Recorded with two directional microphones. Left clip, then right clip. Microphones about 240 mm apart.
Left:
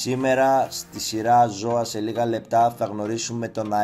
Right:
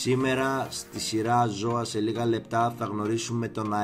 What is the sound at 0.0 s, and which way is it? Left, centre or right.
Speech, centre.